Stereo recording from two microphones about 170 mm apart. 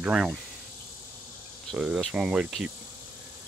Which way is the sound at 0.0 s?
5° right (ahead or behind).